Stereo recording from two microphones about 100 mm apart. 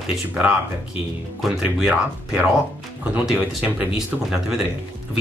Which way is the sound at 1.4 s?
5° right (ahead or behind).